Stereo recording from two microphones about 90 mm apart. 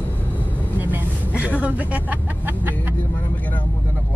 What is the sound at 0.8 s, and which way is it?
Speech, 20° right (ahead or behind).